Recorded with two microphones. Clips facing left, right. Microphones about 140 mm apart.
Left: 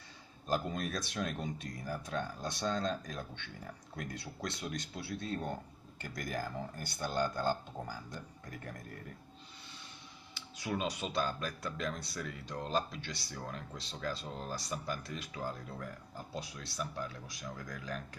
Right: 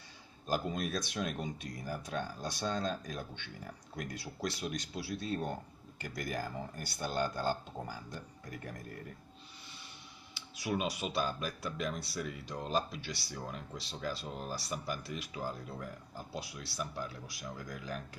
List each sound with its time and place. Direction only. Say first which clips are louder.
0.5 s speech: even; 10° right (ahead or behind)
10.3 s speech: right 2 dB; 10° right (ahead or behind)